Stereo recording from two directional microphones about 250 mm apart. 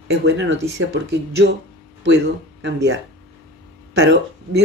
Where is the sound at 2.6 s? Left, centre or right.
Right.